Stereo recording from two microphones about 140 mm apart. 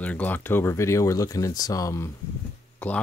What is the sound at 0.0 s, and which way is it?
Speech, 10° left (ahead or behind).